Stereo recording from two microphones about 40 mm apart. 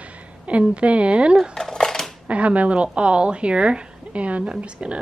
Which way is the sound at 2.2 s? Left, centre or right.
Right.